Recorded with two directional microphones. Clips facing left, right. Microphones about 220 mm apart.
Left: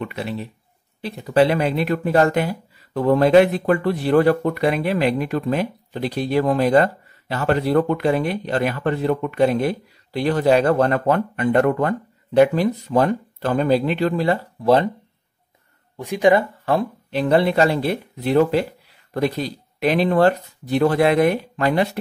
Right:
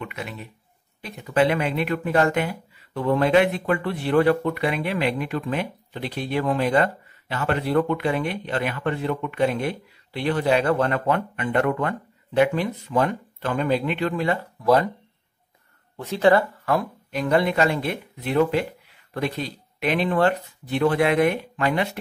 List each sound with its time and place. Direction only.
0.0 s speech: 35° left (ahead or behind)
16.0 s speech: 15° left (ahead or behind)
16.6 s speech: 30° left (ahead or behind)